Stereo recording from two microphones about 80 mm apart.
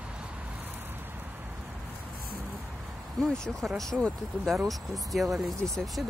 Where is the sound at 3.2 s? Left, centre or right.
Centre.